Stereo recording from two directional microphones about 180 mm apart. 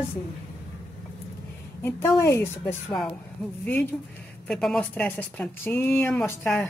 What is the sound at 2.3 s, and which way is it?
Speech, 10° left (ahead or behind).